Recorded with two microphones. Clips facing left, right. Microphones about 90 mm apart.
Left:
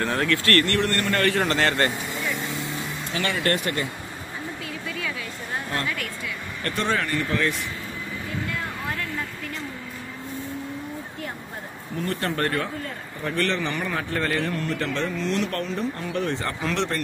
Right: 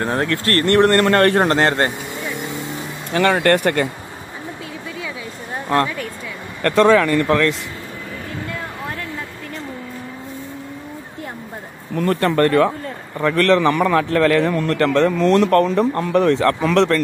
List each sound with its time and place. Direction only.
0.0 s speech: 30° right (ahead or behind)
0.7 s a man's voice: 55° right (ahead or behind); by 2.7 s 20° right (ahead or behind)
3.1 s speech: 50° right (ahead or behind)
3.3 s speech: 65° right (ahead or behind)
6.6 s a man's voice: 90° right
12.0 s a man's voice: 70° right (ahead or behind); by 17.0 s 90° right